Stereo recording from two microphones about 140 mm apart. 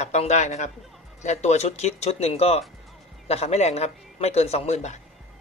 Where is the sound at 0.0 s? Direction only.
50° left (ahead or behind).